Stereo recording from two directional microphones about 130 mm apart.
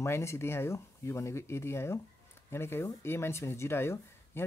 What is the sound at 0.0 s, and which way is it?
Speech, 20° left (ahead or behind).